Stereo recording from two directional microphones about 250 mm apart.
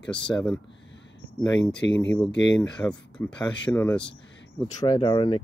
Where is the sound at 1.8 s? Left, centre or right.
Left.